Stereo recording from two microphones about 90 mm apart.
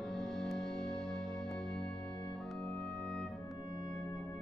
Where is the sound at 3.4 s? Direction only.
40° left (ahead or behind).